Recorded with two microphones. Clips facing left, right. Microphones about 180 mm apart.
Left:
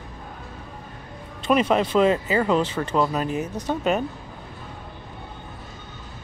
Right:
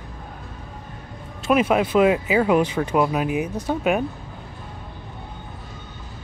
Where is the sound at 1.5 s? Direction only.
5° right (ahead or behind).